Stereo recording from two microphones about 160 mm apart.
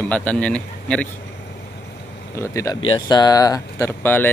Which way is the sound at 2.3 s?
20° left (ahead or behind).